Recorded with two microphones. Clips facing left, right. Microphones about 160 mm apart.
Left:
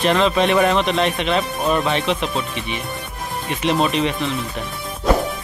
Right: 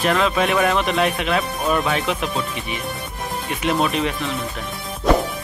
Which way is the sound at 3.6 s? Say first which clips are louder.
Left 2 dB; 5° right (ahead or behind).